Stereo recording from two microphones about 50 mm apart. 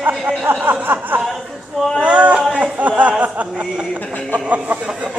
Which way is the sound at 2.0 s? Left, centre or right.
Right.